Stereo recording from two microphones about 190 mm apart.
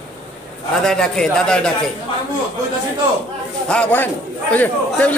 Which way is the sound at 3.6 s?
5° left (ahead or behind).